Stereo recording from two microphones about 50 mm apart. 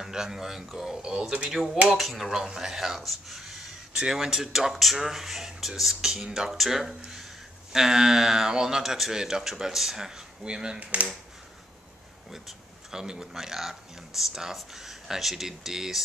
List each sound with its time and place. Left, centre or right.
0.0 s speech: centre
1.5 s speech: centre
6.5 s speech: centre; by 11.1 s right
12.3 s speech: centre